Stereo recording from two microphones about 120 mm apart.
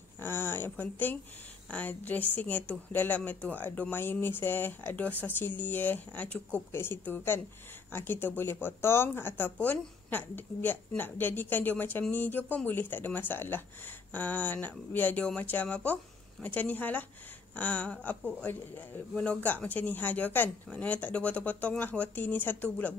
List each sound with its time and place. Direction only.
0.2 s speech: 20° left (ahead or behind)